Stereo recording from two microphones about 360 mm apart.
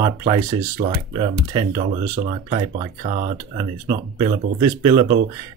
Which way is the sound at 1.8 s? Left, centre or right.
Right.